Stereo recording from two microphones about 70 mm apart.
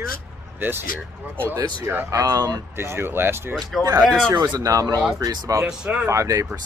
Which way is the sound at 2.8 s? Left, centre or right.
Right.